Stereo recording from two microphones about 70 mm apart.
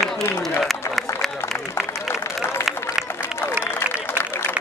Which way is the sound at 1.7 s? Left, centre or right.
Left.